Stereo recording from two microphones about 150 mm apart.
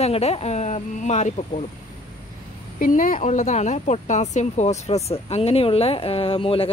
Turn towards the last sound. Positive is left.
turn(degrees=40)  # may be behind; listen again after turning